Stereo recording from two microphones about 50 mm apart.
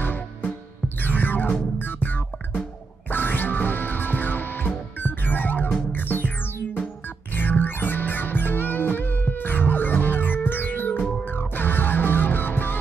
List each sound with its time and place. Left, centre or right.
0.0 s music: left
11.0 s music: centre
11.3 s music: left